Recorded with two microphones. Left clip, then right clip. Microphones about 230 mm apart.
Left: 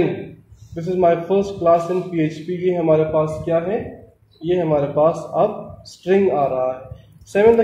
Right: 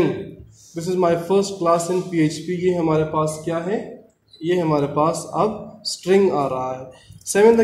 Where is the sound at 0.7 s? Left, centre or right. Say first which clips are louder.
Left 3 dB; right.